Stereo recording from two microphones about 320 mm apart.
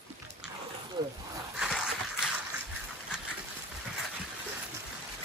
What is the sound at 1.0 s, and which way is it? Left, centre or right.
Speech, centre.